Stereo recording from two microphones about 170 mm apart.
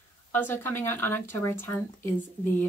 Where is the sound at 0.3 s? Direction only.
10° left (ahead or behind).